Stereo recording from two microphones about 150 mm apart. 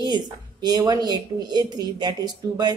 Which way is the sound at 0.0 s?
30° right (ahead or behind).